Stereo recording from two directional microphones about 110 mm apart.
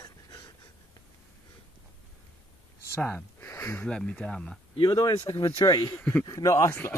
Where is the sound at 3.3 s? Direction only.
25° left (ahead or behind).